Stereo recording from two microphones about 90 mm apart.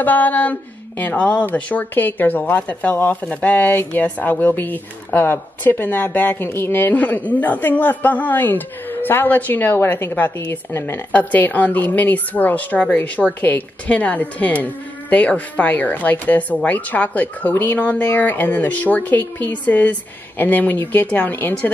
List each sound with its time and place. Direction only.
0.0 s speech: 20° left (ahead or behind)
11.1 s a woman's voice: 15° left (ahead or behind)